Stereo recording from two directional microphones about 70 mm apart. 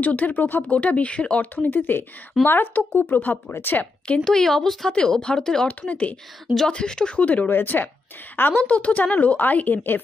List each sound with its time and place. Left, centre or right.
0.0 s speech: left
4.2 s speech: centre
5.7 s speech: left
6.4 s speech: centre; by 10.0 s left